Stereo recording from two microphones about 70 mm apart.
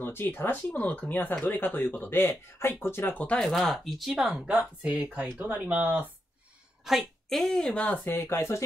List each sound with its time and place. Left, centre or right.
0.0 s speech: left
3.3 s speech: centre
4.8 s speech: right
6.8 s a woman's voice: centre
8.0 s speech: left